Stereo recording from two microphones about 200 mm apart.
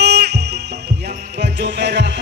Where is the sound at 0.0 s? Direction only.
55° right (ahead or behind).